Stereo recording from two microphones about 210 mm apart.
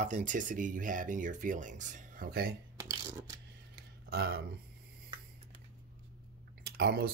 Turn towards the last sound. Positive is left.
turn(degrees=-50)  # may be behind; listen again after turning